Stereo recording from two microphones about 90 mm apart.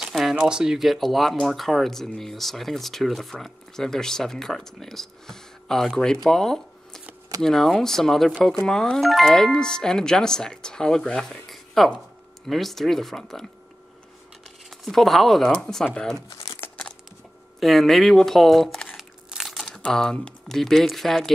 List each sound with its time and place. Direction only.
0.1 s speech: 5° right (ahead or behind)
14.7 s speech: 5° left (ahead or behind)
16.6 s crumpling: 25° left (ahead or behind)
17.6 s speech: centre (ahead or behind)